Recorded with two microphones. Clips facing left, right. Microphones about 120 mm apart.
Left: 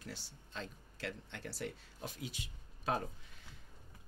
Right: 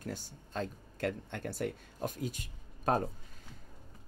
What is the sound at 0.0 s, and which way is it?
Speech, 45° right (ahead or behind).